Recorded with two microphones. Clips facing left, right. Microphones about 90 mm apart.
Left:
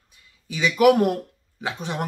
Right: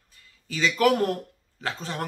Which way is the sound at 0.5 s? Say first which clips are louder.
Left 5 dB; 15° left (ahead or behind).